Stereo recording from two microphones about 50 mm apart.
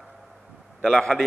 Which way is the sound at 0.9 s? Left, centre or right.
Centre.